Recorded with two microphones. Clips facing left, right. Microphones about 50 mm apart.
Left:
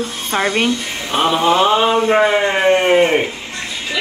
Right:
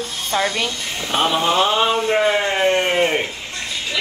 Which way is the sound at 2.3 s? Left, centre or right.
Centre.